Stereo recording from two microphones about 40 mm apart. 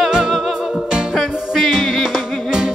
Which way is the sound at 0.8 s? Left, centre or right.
Centre.